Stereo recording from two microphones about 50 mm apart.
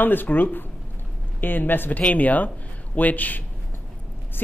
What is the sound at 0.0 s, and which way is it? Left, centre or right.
A man's voice, left.